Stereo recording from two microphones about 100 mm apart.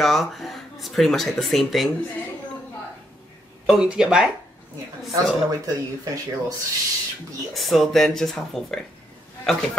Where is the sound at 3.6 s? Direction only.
5° right (ahead or behind).